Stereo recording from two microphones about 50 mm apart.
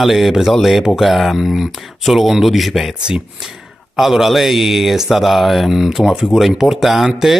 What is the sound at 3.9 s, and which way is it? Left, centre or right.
A man's voice, centre.